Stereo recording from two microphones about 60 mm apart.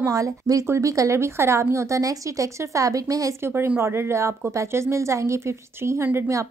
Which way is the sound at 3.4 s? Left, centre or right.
Right.